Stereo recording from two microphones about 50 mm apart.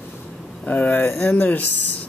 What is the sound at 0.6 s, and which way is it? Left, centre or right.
Speech, left.